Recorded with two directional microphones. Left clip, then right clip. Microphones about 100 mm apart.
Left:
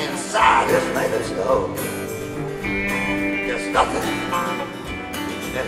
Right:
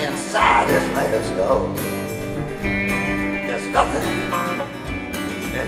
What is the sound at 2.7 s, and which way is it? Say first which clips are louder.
Music: right 1 dB; 35° left (ahead or behind).